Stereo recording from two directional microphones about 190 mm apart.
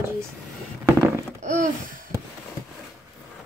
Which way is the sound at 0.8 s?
15° right (ahead or behind).